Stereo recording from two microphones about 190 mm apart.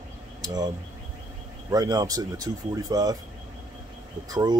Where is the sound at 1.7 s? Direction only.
20° right (ahead or behind).